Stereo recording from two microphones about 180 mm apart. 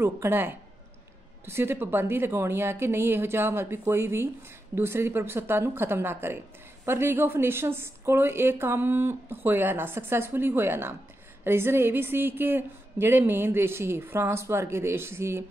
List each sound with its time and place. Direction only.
0.0 s a woman's voice: 15° right (ahead or behind)